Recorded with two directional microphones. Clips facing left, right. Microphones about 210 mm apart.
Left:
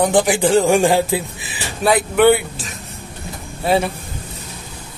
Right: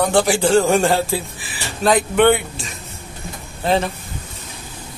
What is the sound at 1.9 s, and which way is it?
A man's voice, 5° left (ahead or behind).